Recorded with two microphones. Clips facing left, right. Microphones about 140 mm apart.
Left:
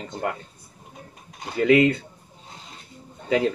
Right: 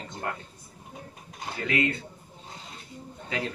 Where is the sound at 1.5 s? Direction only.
65° left (ahead or behind).